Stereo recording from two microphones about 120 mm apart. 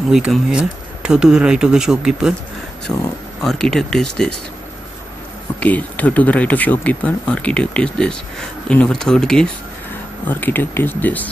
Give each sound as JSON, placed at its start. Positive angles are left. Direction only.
{"t": 0.1, "sound": "speech", "side_deg": -5}
{"t": 2.9, "sound": "speech", "side_deg": 5}
{"t": 5.6, "sound": "speech", "side_deg": 10}
{"t": 10.2, "sound": "speech", "side_deg": 15}